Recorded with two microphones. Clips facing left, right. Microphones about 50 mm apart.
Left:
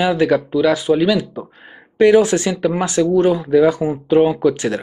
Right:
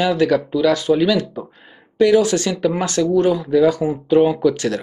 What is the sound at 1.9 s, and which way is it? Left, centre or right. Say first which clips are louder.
Speech: left 2 dB; left.